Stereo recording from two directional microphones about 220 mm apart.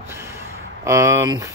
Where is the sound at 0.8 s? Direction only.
15° right (ahead or behind).